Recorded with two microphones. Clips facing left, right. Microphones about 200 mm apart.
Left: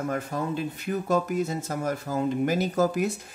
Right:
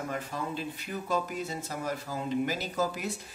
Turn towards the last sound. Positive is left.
turn(degrees=50)  # may be behind; listen again after turning